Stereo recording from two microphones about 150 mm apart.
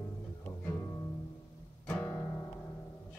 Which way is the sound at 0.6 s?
10° left (ahead or behind).